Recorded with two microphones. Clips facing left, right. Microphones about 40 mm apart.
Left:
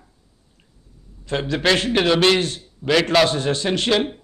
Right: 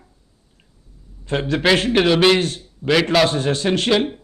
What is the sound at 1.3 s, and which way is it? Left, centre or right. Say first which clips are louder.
Speech: right 2 dB; right.